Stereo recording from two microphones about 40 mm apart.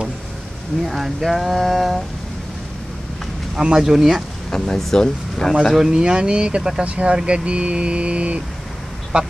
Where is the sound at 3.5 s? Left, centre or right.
Centre.